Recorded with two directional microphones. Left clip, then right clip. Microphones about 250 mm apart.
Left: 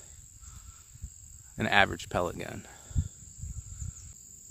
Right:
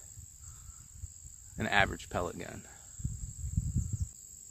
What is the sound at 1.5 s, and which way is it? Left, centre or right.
Speech, left.